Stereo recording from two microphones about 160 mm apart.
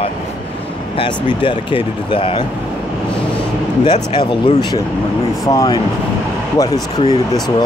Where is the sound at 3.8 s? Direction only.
30° left (ahead or behind).